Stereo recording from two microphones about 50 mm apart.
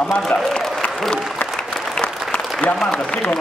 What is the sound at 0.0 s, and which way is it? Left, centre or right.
Speech, centre.